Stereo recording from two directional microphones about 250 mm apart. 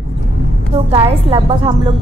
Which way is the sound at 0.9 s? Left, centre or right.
Right.